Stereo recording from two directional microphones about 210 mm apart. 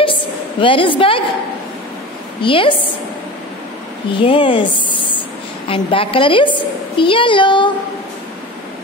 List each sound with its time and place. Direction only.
0.0 s a sound: 25° left (ahead or behind)
2.4 s a woman's voice: 25° left (ahead or behind)
4.2 s a woman's voice: 25° left (ahead or behind)